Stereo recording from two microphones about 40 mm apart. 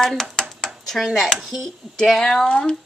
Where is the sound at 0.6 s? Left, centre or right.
Centre.